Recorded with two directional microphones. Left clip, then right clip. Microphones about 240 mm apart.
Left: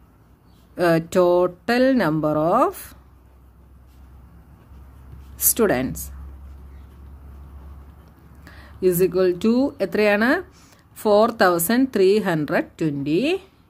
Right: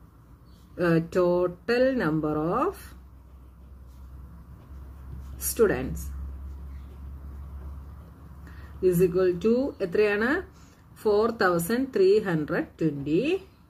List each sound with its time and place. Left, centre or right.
0.7 s speech: left
5.5 s speech: left
8.5 s speech: left